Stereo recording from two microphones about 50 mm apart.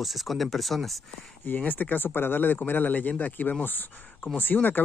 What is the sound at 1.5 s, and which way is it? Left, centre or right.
Speech, left.